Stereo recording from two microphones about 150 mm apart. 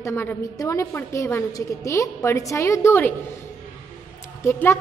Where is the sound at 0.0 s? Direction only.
15° left (ahead or behind).